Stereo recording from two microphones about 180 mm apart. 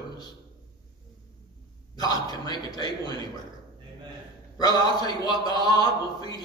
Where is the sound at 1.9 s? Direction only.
20° left (ahead or behind).